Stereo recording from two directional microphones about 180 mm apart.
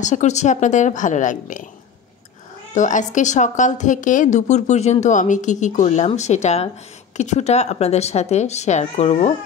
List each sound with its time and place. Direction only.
0.0 s a woman's voice: 40° left (ahead or behind)
2.7 s a woman's voice: 45° left (ahead or behind)